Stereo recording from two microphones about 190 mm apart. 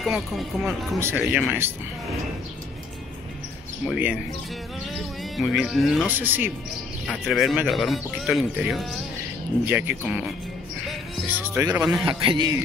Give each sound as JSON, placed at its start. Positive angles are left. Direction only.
{"t": 0.0, "sound": "speech", "side_deg": 0}
{"t": 0.9, "sound": "a man's voice", "side_deg": -10}
{"t": 3.8, "sound": "a man's voice", "side_deg": -5}
{"t": 10.9, "sound": "music", "side_deg": -10}
{"t": 11.8, "sound": "speech", "side_deg": 0}
{"t": 12.1, "sound": "a man's voice", "side_deg": -25}